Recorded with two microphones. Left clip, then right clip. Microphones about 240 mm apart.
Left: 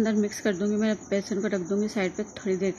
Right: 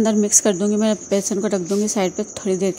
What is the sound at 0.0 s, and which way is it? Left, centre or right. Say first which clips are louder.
A woman's voice: right 9 dB; right.